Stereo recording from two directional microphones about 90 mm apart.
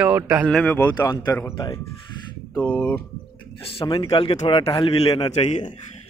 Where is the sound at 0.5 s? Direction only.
15° left (ahead or behind).